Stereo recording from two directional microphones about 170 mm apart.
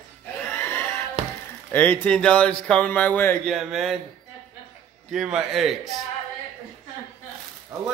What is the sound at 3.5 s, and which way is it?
Speech, centre (ahead or behind).